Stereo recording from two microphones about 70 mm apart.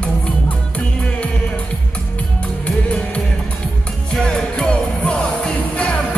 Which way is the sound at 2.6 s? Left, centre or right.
Centre.